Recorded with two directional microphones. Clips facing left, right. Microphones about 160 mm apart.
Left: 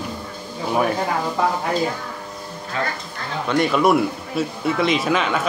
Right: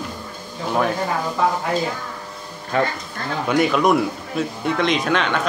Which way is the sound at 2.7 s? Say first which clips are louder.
Right 6 dB; 60° right (ahead or behind).